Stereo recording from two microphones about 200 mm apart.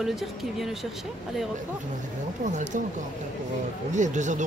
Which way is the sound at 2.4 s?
35° right (ahead or behind).